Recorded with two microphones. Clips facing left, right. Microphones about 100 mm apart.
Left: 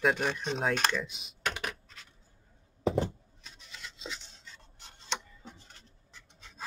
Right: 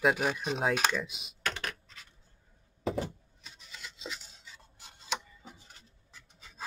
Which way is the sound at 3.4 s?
Centre (ahead or behind).